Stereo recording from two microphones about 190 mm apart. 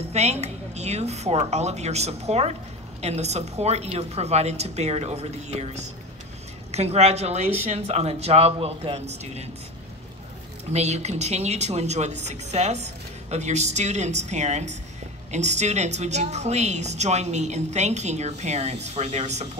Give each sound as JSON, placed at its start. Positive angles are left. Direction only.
{"t": 0.1, "sound": "a woman's voice", "side_deg": -35}
{"t": 10.7, "sound": "a woman's voice", "side_deg": -35}